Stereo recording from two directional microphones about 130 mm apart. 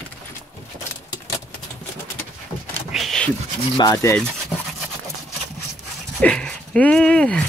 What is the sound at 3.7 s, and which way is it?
Speech, 25° left (ahead or behind).